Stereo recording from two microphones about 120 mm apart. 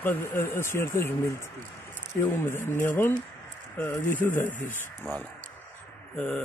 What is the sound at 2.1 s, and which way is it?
Speech, 20° left (ahead or behind).